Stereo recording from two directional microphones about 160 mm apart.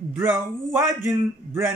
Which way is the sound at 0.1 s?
15° right (ahead or behind).